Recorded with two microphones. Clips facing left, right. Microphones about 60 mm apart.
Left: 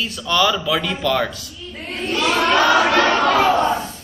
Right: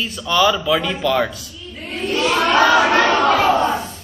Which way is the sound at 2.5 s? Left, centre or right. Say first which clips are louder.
Right 2 dB; right.